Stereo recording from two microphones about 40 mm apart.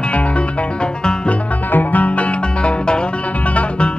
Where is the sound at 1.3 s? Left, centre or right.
Left.